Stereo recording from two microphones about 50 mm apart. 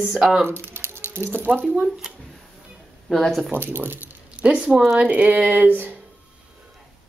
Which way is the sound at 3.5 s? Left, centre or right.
Right.